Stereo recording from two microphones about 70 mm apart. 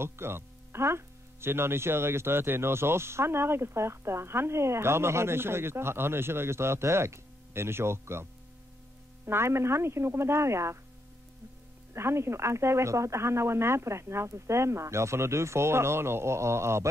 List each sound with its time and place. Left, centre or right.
0.0 s speech: right
11.9 s speech: right